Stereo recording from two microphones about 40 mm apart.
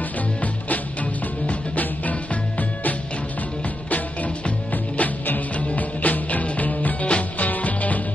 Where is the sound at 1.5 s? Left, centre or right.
Left.